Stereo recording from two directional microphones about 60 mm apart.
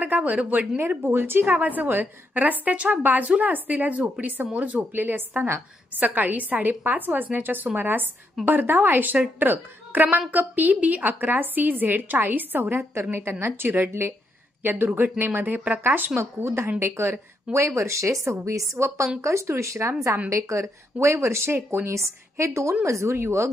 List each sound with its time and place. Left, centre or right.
0.0 s speech: right
0.7 s a woman's voice: right
1.6 s a woman's voice: right
13.5 s a woman's voice: right
16.3 s speech: right
21.5 s a woman's voice: right
21.8 s speech: right